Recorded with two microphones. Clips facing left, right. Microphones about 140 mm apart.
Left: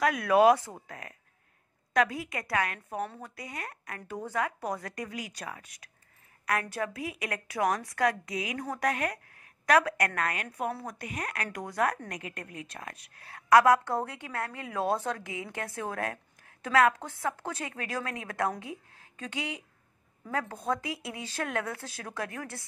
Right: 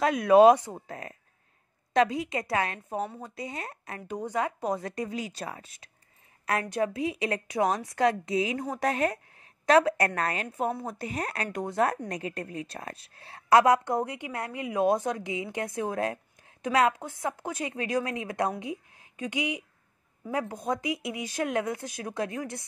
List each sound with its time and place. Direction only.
0.0 s a woman's voice: 25° right (ahead or behind)